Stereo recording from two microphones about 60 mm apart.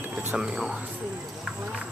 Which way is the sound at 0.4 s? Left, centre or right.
Centre.